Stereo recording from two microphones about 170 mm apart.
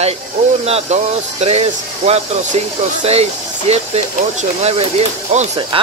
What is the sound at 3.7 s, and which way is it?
Speech, 40° right (ahead or behind).